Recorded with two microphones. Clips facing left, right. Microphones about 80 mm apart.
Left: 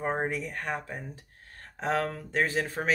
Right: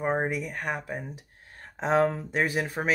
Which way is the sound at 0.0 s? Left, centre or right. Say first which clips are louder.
Right 3 dB; centre.